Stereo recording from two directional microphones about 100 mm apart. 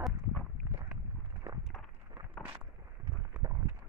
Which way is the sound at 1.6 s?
Centre (ahead or behind).